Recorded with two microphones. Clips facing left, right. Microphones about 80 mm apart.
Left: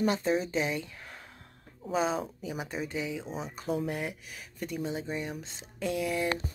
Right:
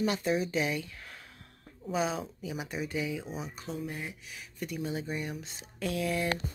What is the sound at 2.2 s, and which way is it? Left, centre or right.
Speech, left.